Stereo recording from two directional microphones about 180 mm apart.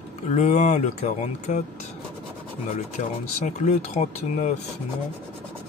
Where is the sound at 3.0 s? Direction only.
40° left (ahead or behind).